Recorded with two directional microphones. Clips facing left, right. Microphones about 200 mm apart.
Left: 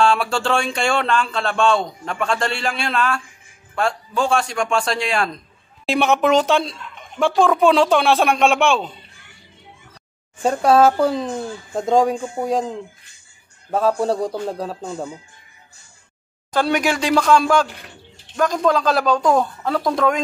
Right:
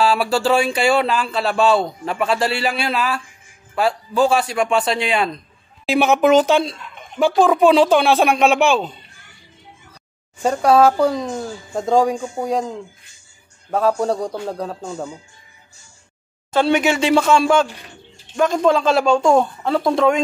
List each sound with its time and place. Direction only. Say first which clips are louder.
0.0 s speech: right 1 dB; 5° right (ahead or behind)
10.4 s speech: even; centre (ahead or behind)
13.7 s speech: even; centre (ahead or behind)
16.6 s speech: right 3 dB; 5° right (ahead or behind)
18.5 s speech: right 2 dB; 25° right (ahead or behind)
19.7 s speech: right 3 dB; 5° right (ahead or behind)